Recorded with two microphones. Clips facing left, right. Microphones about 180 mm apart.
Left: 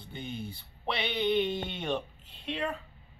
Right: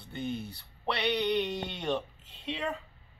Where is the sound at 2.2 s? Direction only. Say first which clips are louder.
Even; 90° right.